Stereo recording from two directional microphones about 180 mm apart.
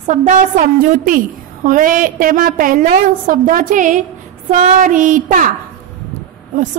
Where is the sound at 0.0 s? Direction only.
45° right (ahead or behind).